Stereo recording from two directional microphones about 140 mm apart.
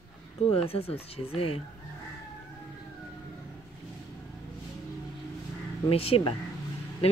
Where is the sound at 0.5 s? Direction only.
45° left (ahead or behind).